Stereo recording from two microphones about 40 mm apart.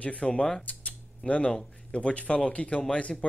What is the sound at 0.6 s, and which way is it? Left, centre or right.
Speech, left.